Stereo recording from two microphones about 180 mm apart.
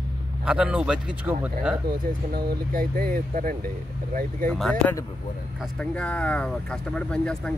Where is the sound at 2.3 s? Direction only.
55° right (ahead or behind).